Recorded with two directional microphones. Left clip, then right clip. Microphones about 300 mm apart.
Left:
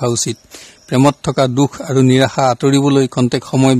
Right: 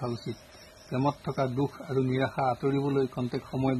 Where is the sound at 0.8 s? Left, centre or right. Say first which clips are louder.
Left 16 dB; left.